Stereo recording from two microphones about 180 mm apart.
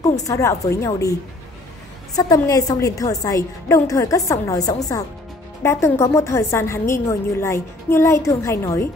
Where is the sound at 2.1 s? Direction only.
20° left (ahead or behind).